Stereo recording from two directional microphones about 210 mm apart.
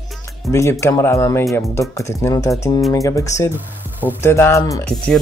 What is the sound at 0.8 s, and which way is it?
Speech, 15° left (ahead or behind).